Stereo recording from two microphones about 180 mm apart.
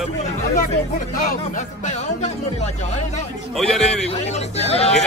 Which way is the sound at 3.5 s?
5° left (ahead or behind).